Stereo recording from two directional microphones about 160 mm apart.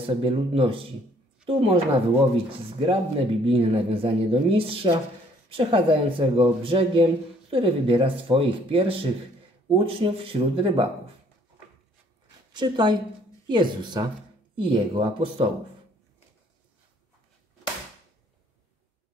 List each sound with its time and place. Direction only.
0.0 s speech: 35° right (ahead or behind)
2.8 s speech: 35° right (ahead or behind)
12.5 s speech: 30° right (ahead or behind)